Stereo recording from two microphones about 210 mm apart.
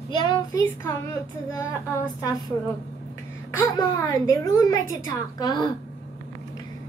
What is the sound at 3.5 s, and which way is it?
A woman's voice, 15° left (ahead or behind).